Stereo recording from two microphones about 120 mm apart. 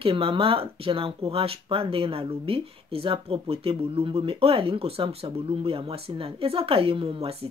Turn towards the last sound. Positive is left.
turn(degrees=-55)  # may be behind; listen again after turning